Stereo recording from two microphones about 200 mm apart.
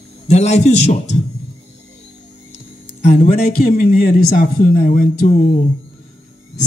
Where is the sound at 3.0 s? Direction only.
40° left (ahead or behind).